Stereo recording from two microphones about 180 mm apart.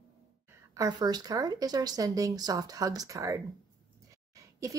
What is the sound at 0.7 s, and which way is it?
A woman's voice, 20° right (ahead or behind).